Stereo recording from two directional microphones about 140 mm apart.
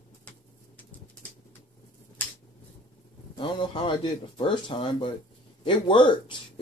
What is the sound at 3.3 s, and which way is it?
Speech, 35° left (ahead or behind).